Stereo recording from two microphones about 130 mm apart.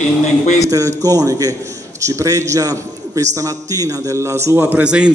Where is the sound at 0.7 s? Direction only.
25° right (ahead or behind).